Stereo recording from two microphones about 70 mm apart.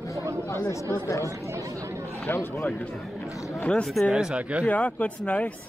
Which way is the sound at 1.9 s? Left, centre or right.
Right.